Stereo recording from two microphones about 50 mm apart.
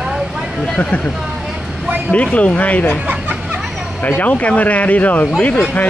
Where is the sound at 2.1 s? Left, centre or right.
Left.